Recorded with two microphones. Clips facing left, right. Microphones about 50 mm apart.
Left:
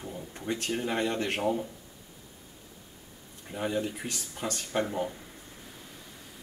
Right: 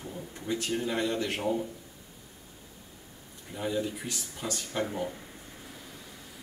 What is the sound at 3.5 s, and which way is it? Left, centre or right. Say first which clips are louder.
Speech: left 1 dB; left.